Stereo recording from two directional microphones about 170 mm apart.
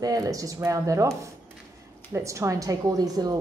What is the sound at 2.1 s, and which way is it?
Speech, 15° right (ahead or behind).